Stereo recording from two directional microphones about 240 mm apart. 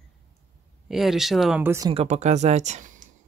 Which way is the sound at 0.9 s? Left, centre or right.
Centre.